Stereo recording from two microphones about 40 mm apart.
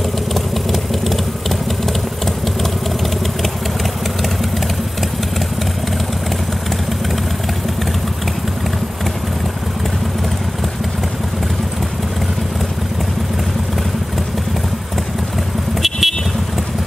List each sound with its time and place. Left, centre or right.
0.3 s vehicle: centre
1.9 s typing: centre
15.8 s vehicle: centre